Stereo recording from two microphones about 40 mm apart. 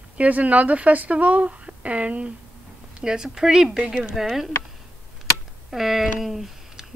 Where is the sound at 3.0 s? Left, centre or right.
Centre.